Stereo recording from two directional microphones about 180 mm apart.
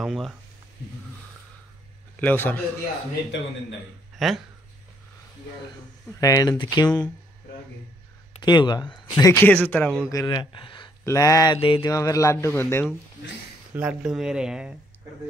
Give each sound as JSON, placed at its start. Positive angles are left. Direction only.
{"t": 0.0, "sound": "speech", "side_deg": 0}
{"t": 2.1, "sound": "speech", "side_deg": 10}
{"t": 4.2, "sound": "speech", "side_deg": 0}
{"t": 6.1, "sound": "speech", "side_deg": 20}
{"t": 8.4, "sound": "speech", "side_deg": 25}
{"t": 10.1, "sound": "a man's voice", "side_deg": 20}
{"t": 13.7, "sound": "speech", "side_deg": -5}